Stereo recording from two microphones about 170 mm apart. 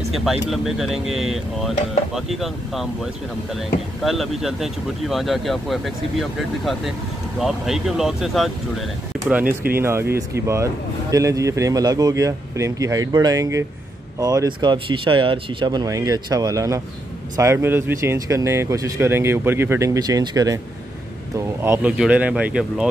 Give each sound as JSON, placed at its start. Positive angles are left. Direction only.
{"t": 0.1, "sound": "speech", "side_deg": 0}